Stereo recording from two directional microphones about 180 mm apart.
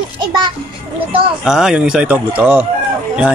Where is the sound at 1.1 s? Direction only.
5° right (ahead or behind).